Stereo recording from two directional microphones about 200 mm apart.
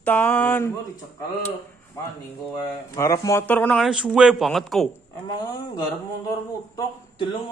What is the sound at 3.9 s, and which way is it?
Speech, 5° right (ahead or behind).